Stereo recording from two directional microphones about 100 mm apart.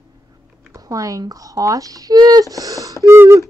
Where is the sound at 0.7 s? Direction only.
35° right (ahead or behind).